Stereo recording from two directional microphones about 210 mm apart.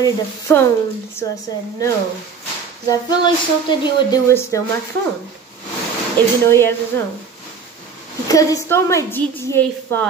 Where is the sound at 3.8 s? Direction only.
15° left (ahead or behind).